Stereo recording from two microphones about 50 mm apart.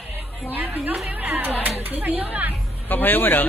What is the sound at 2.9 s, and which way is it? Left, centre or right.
Speech, left.